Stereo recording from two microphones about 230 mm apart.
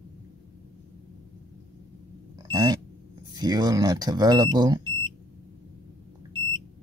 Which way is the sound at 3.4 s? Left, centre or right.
Centre.